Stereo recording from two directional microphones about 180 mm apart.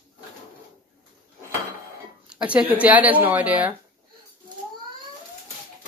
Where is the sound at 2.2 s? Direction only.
5° right (ahead or behind).